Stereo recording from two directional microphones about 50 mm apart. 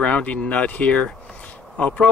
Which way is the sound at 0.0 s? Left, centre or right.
Left.